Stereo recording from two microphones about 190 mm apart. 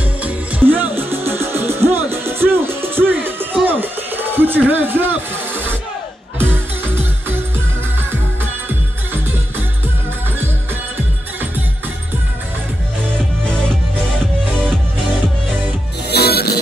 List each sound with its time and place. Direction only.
0.2 s music: 10° right (ahead or behind)
3.5 s a sound: 10° right (ahead or behind)
6.3 s music: 10° right (ahead or behind)
16.1 s music: 55° left (ahead or behind)